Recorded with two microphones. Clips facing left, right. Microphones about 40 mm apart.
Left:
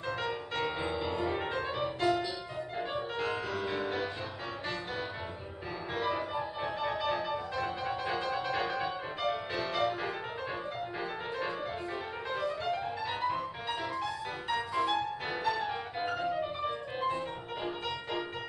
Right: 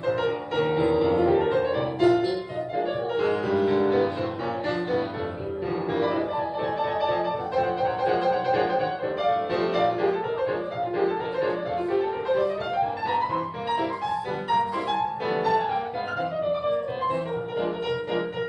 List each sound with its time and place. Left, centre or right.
0.2 s music: centre
0.7 s music: centre
1.1 s music: centre
3.2 s music: centre
5.9 s music: centre
11.0 s music: centre
13.1 s music: right
14.5 s music: centre